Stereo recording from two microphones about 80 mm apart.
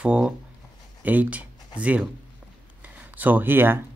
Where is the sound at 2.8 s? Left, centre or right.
Right.